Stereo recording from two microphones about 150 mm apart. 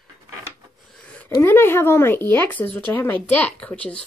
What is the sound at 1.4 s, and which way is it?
Speech, 15° left (ahead or behind).